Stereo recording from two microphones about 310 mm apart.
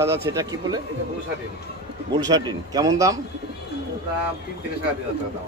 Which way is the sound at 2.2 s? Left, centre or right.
Centre.